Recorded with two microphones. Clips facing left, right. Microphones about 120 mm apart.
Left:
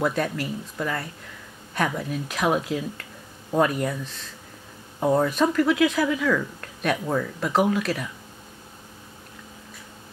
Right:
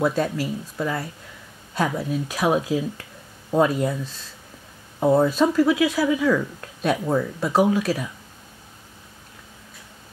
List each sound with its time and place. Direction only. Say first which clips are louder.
0.0 s speech: right 3 dB; 15° right (ahead or behind)
5.0 s speech: right 3 dB; 10° right (ahead or behind)